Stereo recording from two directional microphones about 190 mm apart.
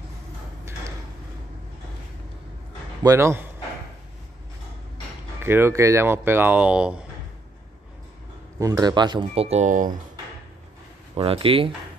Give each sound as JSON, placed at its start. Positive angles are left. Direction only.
{"t": 3.0, "sound": "speech", "side_deg": -15}
{"t": 5.4, "sound": "speech", "side_deg": -10}
{"t": 8.5, "sound": "speech", "side_deg": -15}
{"t": 11.1, "sound": "speech", "side_deg": -30}